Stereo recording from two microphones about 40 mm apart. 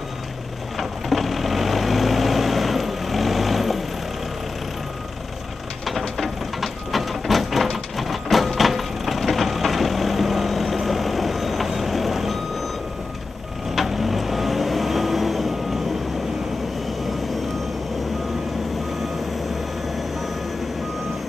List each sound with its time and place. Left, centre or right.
0.7 s vehicle: centre
5.9 s a sound: centre
13.7 s vehicle: centre